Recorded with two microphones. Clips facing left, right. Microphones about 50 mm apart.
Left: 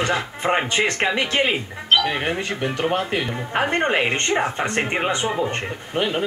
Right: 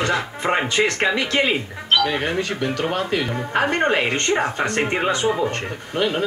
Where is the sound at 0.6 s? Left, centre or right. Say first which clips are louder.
Right 1 dB; left.